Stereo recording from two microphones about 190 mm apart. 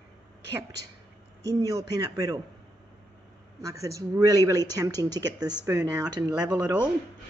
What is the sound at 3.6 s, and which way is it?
Speech, 15° right (ahead or behind).